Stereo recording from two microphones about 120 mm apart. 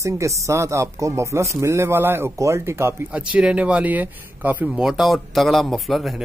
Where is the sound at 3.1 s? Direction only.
10° right (ahead or behind).